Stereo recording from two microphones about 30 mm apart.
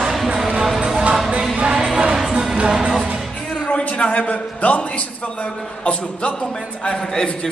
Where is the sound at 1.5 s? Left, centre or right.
Right.